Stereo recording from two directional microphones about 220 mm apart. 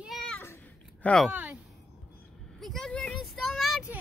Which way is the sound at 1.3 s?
5° right (ahead or behind).